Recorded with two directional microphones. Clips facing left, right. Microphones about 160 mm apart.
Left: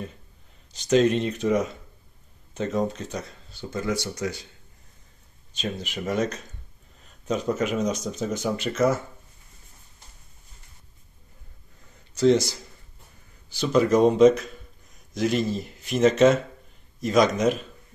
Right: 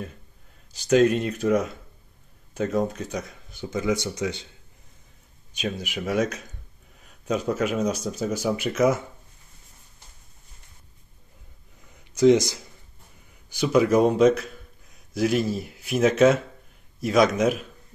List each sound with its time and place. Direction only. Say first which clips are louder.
0.7 s speech: right 1 dB; 5° right (ahead or behind); by 4.5 s 20° right (ahead or behind)
5.5 s speech: right 1 dB; 10° right (ahead or behind)
12.0 s speech: right 2 dB; 15° right (ahead or behind)